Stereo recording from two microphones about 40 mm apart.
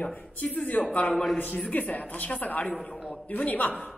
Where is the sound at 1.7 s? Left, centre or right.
Left.